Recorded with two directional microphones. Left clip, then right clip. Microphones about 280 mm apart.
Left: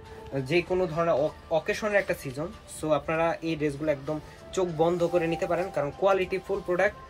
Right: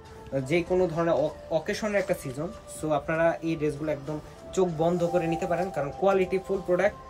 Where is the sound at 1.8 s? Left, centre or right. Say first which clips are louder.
Left 1 dB; centre.